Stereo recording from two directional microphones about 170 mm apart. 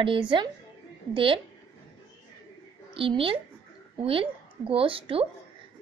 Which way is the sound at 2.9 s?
30° right (ahead or behind).